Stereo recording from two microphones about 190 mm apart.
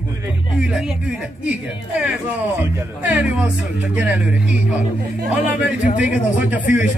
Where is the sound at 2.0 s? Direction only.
10° right (ahead or behind).